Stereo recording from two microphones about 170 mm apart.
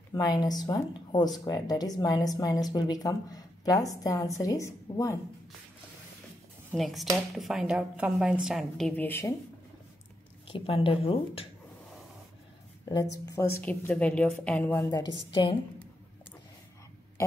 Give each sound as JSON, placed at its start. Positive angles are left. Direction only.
{"t": 0.1, "sound": "speech", "side_deg": 25}
{"t": 6.7, "sound": "a woman's voice", "side_deg": 0}
{"t": 10.5, "sound": "speech", "side_deg": 30}
{"t": 13.2, "sound": "a woman's voice", "side_deg": 20}
{"t": 14.9, "sound": "speech", "side_deg": 20}